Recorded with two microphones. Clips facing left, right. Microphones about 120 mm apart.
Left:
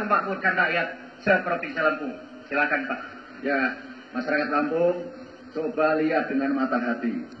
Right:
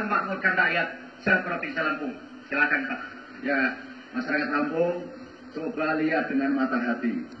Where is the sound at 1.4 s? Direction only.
50° left (ahead or behind).